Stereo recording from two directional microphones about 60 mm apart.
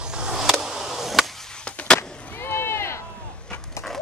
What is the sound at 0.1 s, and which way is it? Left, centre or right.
Skateboard, centre.